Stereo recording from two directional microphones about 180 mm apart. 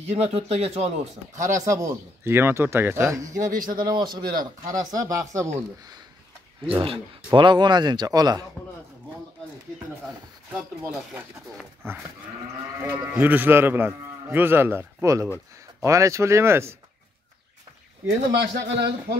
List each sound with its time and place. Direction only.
0.1 s speech: 35° right (ahead or behind)
1.6 s speech: 15° right (ahead or behind)
3.3 s speech: 45° right (ahead or behind)
3.7 s speech: 25° right (ahead or behind)
6.7 s speech: 30° right (ahead or behind)
10.9 s speech: centre (ahead or behind)
11.3 s speech: 15° right (ahead or behind)
18.3 s a man's voice: 70° right (ahead or behind)